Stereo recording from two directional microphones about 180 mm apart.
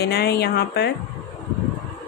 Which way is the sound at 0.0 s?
60° left (ahead or behind).